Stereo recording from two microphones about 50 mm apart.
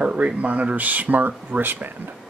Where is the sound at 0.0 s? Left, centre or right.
Right.